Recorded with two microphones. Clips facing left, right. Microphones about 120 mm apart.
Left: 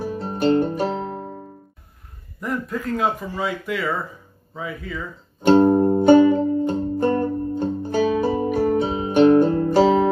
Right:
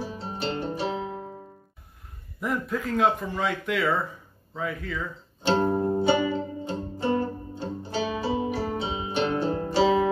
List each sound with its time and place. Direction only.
0.0 s guitar: 50° left (ahead or behind)
2.4 s a man's voice: centre (ahead or behind)
5.5 s music: 35° left (ahead or behind)
5.9 s music: 50° left (ahead or behind)